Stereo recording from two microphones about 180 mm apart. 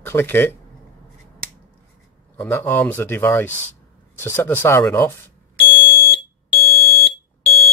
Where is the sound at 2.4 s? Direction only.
15° left (ahead or behind).